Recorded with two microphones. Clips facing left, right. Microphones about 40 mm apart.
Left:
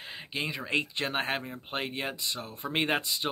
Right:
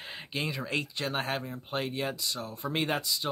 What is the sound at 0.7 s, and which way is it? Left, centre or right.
Speech, left.